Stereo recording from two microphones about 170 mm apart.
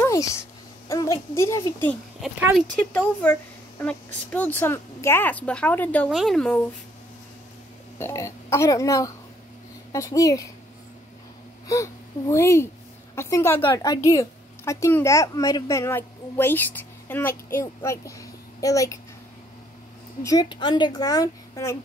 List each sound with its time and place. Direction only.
0.0 s a sound: 20° left (ahead or behind)
0.8 s a woman's voice: 20° left (ahead or behind)
8.0 s a woman's voice: 15° left (ahead or behind)
11.6 s a woman's voice: 20° left (ahead or behind)
20.2 s a woman's voice: 25° left (ahead or behind)